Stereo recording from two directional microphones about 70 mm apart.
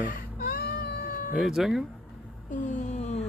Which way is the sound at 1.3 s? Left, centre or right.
Centre.